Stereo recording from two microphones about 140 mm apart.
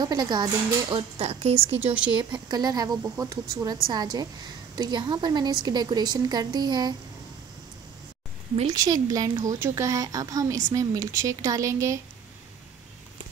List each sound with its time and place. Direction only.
0.0 s speech: 30° right (ahead or behind)
1.1 s a woman's voice: 45° right (ahead or behind)
2.1 s speech: 30° right (ahead or behind)
8.6 s speech: 30° right (ahead or behind)